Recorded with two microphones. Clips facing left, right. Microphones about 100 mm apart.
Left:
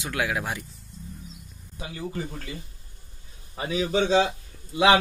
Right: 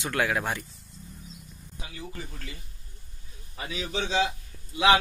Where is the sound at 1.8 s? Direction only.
35° left (ahead or behind).